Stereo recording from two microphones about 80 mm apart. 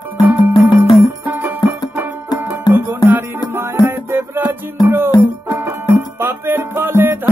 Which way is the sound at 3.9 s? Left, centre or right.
Right.